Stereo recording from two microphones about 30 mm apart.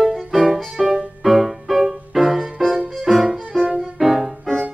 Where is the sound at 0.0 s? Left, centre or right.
Centre.